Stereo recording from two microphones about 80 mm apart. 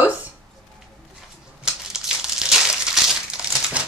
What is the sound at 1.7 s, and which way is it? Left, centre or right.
Crumpling, centre.